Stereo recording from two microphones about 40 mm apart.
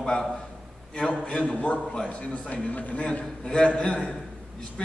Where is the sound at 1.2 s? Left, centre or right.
Left.